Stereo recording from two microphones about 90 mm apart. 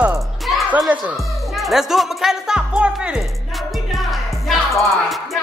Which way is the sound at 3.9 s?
Centre (ahead or behind).